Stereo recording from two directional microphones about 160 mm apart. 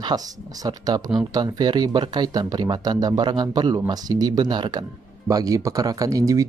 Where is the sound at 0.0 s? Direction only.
25° right (ahead or behind).